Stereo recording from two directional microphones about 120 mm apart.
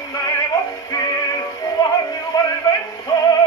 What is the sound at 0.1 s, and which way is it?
Synthetic singing, 30° left (ahead or behind).